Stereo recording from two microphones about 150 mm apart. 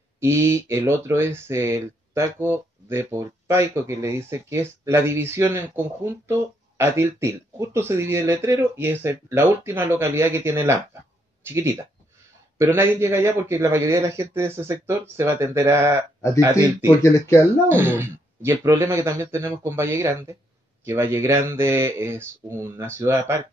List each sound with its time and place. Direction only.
0.2 s speech: 15° right (ahead or behind)
17.0 s speech: 20° left (ahead or behind)
17.6 s speech: 15° right (ahead or behind)